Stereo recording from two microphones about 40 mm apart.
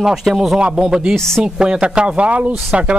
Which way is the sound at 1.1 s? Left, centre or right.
Centre.